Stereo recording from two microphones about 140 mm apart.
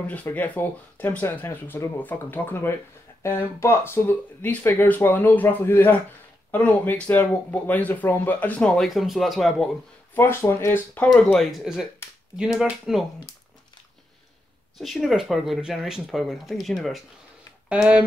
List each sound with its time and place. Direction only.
0.0 s speech: 10° left (ahead or behind)
10.1 s speech: 15° left (ahead or behind)
11.1 s speech: 5° left (ahead or behind)
14.8 s speech: centre (ahead or behind)